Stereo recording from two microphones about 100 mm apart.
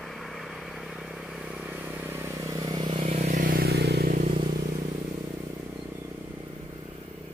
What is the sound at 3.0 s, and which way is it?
Vehicle, 90° right.